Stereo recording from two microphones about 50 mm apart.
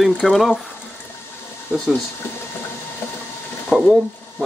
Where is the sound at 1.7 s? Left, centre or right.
Right.